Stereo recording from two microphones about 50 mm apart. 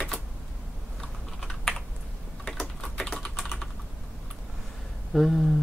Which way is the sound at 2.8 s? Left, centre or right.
Centre.